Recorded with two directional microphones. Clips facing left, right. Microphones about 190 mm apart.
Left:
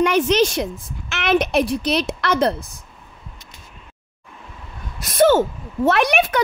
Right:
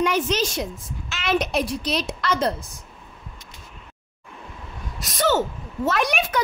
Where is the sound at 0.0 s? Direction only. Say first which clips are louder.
Left 6 dB; 65° left (ahead or behind).